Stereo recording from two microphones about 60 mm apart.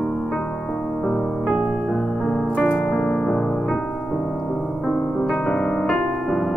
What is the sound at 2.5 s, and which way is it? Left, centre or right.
Music, centre.